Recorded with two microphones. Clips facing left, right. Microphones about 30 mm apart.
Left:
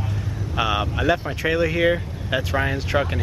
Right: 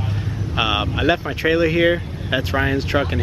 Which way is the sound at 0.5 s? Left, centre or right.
Right.